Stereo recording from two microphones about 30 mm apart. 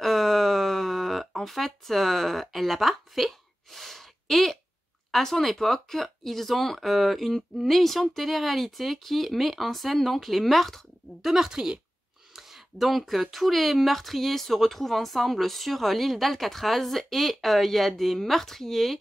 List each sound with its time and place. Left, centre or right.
0.0 s wail: centre
1.3 s speech: centre
11.2 s speech: centre
12.4 s speech: centre